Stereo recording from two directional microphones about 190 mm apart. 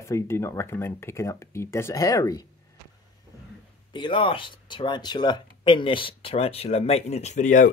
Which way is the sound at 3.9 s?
25° left (ahead or behind).